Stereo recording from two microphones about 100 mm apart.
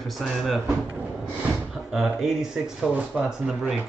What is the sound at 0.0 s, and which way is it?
Speech, centre (ahead or behind).